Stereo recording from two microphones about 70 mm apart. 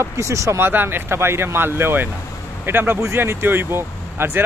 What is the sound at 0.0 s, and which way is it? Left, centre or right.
Speech, right.